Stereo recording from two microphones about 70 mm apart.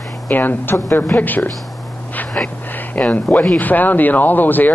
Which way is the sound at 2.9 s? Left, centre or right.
Centre.